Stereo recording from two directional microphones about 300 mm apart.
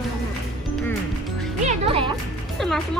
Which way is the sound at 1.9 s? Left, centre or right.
Centre.